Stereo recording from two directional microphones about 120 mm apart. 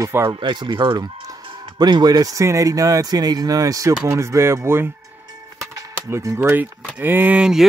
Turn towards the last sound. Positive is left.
turn(degrees=-5)  # may be behind; listen again after turning